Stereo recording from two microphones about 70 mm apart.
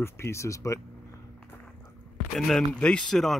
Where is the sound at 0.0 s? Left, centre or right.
Left.